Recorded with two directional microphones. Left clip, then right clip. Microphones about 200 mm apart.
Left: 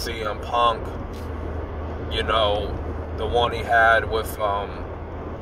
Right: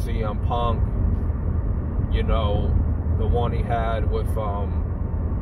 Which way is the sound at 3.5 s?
25° left (ahead or behind).